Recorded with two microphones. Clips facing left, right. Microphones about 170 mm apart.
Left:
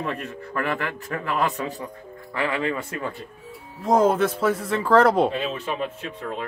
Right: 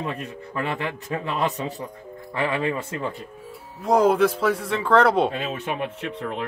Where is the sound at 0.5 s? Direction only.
20° right (ahead or behind).